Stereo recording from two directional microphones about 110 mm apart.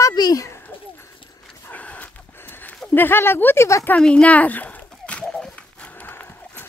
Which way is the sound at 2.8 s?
20° left (ahead or behind).